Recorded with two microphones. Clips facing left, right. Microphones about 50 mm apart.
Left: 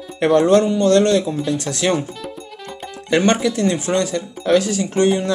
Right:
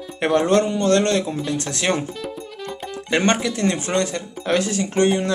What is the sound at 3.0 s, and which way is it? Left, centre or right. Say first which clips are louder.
Speech: left 3 dB; right.